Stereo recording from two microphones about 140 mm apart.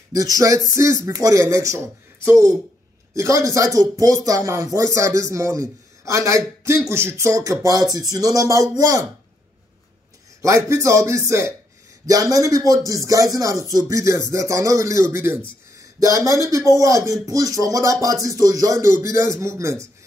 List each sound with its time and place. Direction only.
0.1 s a man's voice: 25° right (ahead or behind)
10.4 s a man's voice: 20° right (ahead or behind)